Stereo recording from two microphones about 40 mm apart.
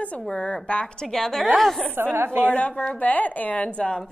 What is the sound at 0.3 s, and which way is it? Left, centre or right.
Speech, left.